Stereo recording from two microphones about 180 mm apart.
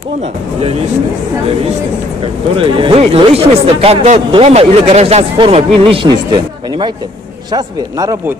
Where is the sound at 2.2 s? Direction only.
30° right (ahead or behind).